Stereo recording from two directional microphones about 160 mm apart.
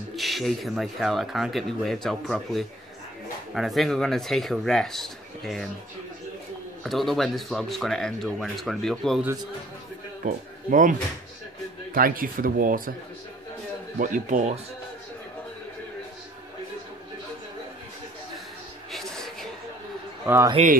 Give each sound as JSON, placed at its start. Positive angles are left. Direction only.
{"t": 0.1, "sound": "speech", "side_deg": 0}
{"t": 6.8, "sound": "speech", "side_deg": 0}
{"t": 10.2, "sound": "speech", "side_deg": -55}
{"t": 13.9, "sound": "speech", "side_deg": -55}
{"t": 18.9, "sound": "a sound", "side_deg": 0}
{"t": 20.6, "sound": "speech", "side_deg": -40}